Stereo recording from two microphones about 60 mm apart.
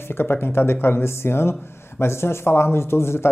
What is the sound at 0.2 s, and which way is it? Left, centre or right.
Speech, left.